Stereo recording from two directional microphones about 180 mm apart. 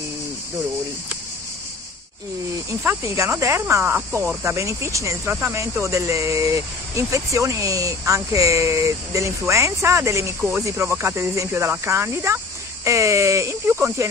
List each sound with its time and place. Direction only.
2.8 s speech: 15° right (ahead or behind)